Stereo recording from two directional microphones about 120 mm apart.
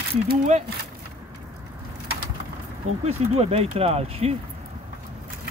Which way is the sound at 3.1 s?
60° right (ahead or behind).